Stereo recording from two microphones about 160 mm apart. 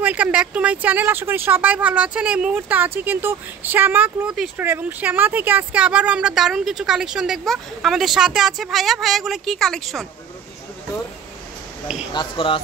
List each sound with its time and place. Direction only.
0.0 s speech: 10° right (ahead or behind)
12.1 s speech: 30° left (ahead or behind)